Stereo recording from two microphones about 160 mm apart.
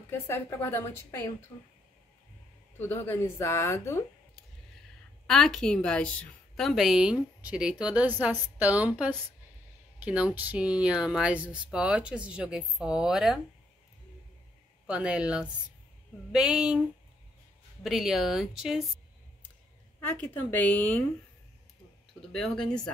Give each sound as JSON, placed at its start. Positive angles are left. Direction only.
{"t": 0.1, "sound": "a woman's voice", "side_deg": 15}
{"t": 2.8, "sound": "a woman's voice", "side_deg": 15}
{"t": 5.2, "sound": "a woman's voice", "side_deg": 0}
{"t": 14.9, "sound": "a woman's voice", "side_deg": -5}
{"t": 17.8, "sound": "a woman's voice", "side_deg": 0}
{"t": 20.0, "sound": "a woman's voice", "side_deg": 10}
{"t": 22.2, "sound": "a woman's voice", "side_deg": 0}